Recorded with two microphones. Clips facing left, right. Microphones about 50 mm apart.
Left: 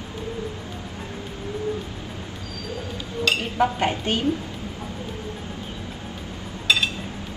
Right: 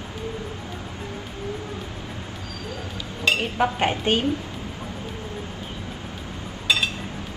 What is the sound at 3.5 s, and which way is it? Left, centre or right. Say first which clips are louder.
Speech: even; right.